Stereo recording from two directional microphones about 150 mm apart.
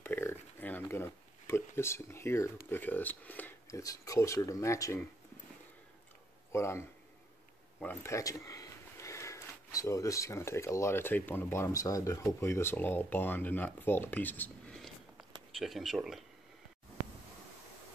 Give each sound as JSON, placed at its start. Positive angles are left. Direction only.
{"t": 0.0, "sound": "speech", "side_deg": 15}
{"t": 3.8, "sound": "speech", "side_deg": 20}
{"t": 6.5, "sound": "speech", "side_deg": 15}
{"t": 14.8, "sound": "a sound", "side_deg": 0}